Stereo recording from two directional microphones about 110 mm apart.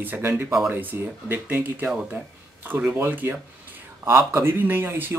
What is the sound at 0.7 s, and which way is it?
Speech, 15° right (ahead or behind).